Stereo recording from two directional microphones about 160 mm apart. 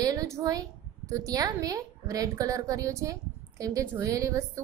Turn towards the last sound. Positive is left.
turn(degrees=-20)  # may be behind; listen again after turning